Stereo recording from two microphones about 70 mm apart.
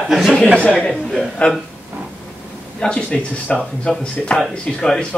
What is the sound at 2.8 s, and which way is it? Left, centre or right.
A man's voice, centre.